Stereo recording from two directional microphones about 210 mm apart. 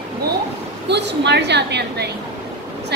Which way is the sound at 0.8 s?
55° right (ahead or behind).